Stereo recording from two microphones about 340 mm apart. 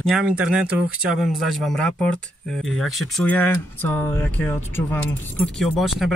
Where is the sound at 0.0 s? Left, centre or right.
Centre.